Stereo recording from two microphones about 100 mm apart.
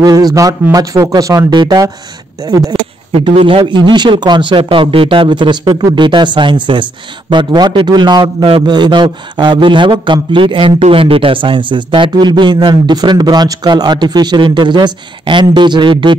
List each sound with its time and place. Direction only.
0.0 s speech: 40° right (ahead or behind)
2.4 s speech: 35° right (ahead or behind)
3.1 s a man's voice: 65° right (ahead or behind)